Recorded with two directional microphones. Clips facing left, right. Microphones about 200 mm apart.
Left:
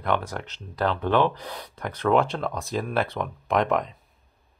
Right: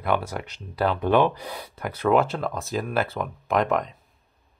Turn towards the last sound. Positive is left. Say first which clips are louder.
# even
turn(degrees=0)  # may be behind; listen again after turning